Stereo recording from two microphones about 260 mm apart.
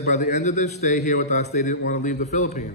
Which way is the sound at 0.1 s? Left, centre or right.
Left.